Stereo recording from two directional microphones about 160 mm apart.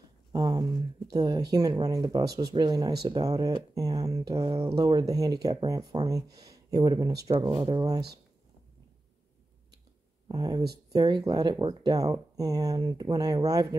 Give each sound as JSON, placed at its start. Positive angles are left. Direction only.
{"t": 0.3, "sound": "a sound", "side_deg": -25}
{"t": 1.1, "sound": "speech", "side_deg": -25}
{"t": 7.4, "sound": "speech", "side_deg": -35}
{"t": 10.2, "sound": "speech", "side_deg": -25}